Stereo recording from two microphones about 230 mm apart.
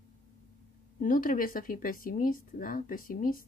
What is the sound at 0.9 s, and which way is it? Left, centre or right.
Speech, left.